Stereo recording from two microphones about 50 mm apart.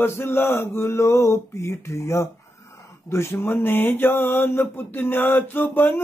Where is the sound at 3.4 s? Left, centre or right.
Left.